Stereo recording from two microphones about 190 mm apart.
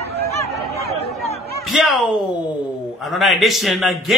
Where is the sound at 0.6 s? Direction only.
60° right (ahead or behind).